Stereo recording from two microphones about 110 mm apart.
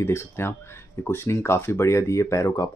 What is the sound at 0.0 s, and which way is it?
Speech, 25° left (ahead or behind).